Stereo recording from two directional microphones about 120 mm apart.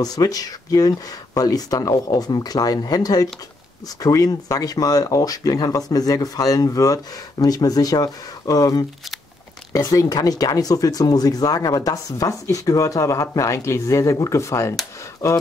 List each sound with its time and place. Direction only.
0.0 s speech: 30° left (ahead or behind)